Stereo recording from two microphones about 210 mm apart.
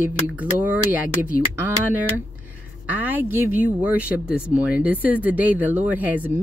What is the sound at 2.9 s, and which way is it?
Speech, 10° right (ahead or behind).